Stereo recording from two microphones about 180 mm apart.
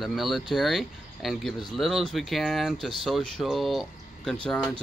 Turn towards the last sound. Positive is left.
turn(degrees=5)  # may be behind; listen again after turning